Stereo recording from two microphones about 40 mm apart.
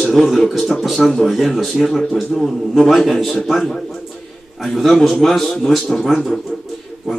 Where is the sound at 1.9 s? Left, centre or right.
Centre.